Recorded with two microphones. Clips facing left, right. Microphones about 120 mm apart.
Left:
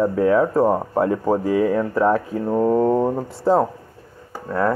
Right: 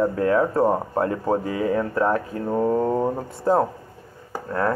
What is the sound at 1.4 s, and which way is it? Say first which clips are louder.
Speech: left 6 dB; 65° left (ahead or behind).